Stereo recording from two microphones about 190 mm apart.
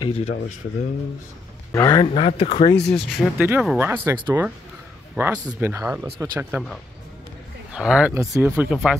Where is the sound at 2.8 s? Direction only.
5° left (ahead or behind).